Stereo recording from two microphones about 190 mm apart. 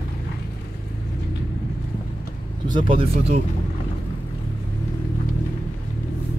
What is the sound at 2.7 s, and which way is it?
Speech, 30° right (ahead or behind).